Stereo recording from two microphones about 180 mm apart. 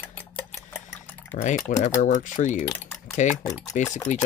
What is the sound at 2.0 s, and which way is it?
Speech, 45° left (ahead or behind).